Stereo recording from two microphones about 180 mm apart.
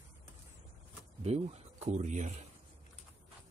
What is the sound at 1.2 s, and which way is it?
Speech, 35° right (ahead or behind).